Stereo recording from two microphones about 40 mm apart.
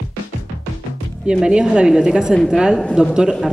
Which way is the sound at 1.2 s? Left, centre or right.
Right.